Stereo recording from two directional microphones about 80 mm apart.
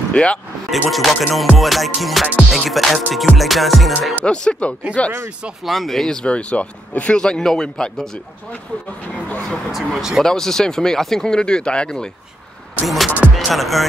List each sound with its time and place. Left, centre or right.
0.1 s speech: centre
0.7 s music: centre
4.3 s speech: centre
5.7 s speech: centre
9.7 s music: centre
10.2 s speech: centre
12.8 s music: centre